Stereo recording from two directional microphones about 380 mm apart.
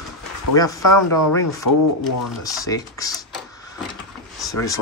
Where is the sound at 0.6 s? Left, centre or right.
Left.